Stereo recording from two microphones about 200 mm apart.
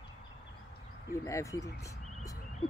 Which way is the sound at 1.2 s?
15° left (ahead or behind).